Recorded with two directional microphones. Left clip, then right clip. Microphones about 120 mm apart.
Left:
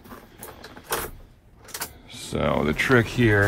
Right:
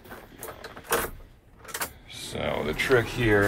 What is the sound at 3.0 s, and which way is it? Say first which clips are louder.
Speech: left 1 dB; 90° left.